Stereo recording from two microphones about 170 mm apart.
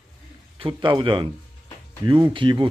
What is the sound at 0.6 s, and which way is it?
Speech, 30° right (ahead or behind).